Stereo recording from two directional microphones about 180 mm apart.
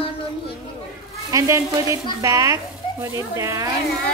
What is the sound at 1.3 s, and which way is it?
Speech, 15° right (ahead or behind).